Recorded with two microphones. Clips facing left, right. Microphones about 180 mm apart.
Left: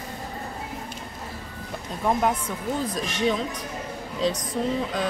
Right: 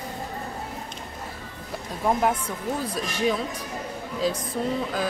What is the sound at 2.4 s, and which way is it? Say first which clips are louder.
Speech: left 1 dB; 10° right (ahead or behind).